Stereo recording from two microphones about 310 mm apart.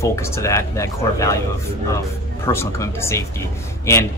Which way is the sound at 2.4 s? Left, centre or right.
Centre.